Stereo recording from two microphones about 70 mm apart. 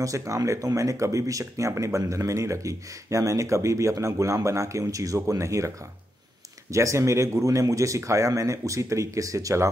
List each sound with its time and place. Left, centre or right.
0.0 s speech: right
6.7 s speech: right